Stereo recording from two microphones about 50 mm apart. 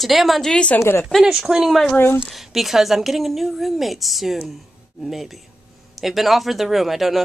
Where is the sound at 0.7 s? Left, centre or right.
Left.